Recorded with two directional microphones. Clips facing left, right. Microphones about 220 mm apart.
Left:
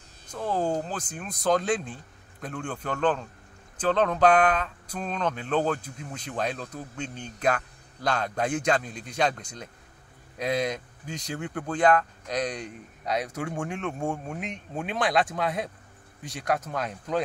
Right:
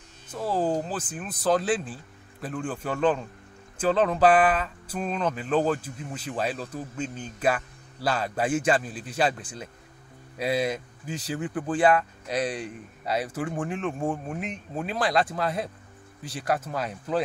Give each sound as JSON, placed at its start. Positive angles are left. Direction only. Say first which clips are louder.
{"t": 0.3, "sound": "a man's voice", "louder": "right 1 dB", "side_deg": -5}